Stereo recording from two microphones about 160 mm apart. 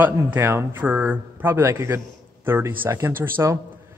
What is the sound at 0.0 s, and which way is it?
A man's voice, 10° right (ahead or behind).